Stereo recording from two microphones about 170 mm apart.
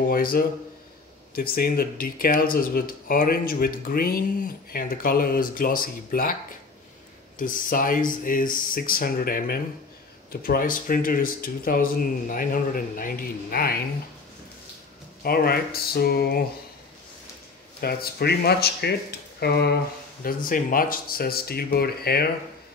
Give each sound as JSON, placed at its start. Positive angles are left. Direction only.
{"t": 0.1, "sound": "speech", "side_deg": 60}
{"t": 7.3, "sound": "speech", "side_deg": 55}
{"t": 15.2, "sound": "speech", "side_deg": 65}
{"t": 17.7, "sound": "speech", "side_deg": 65}
{"t": 20.2, "sound": "speech", "side_deg": 55}